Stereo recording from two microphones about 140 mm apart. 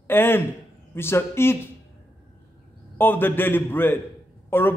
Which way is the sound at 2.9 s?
15° left (ahead or behind).